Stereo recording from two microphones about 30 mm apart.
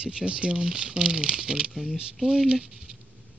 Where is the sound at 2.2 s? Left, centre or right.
Right.